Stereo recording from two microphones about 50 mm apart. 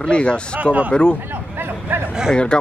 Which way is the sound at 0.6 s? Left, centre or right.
Right.